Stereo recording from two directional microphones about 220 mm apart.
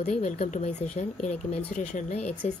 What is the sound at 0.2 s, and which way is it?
Speech, 30° left (ahead or behind).